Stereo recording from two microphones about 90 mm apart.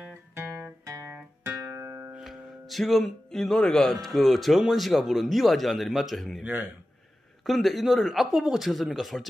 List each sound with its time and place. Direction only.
0.3 s guitar: 30° right (ahead or behind)
1.1 s music: 25° right (ahead or behind)
2.1 s speech: centre (ahead or behind)
6.4 s a man's voice: 15° right (ahead or behind)
7.4 s speech: centre (ahead or behind)